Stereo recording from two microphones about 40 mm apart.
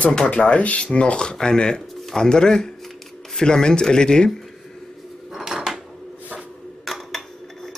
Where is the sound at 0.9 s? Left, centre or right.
Left.